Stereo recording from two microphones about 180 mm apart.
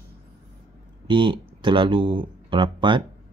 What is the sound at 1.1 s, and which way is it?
Speech, 25° right (ahead or behind).